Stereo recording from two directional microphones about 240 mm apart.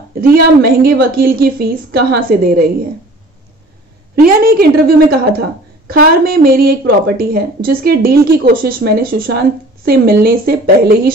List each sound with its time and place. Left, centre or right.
0.1 s a woman's voice: right
4.1 s a woman's voice: right